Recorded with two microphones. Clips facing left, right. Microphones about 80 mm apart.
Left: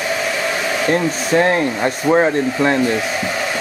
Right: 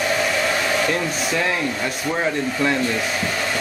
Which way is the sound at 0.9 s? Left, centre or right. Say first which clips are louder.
Left 6 dB; left.